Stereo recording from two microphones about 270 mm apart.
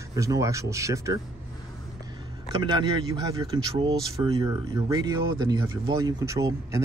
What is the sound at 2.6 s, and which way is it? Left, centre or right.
Speech, centre.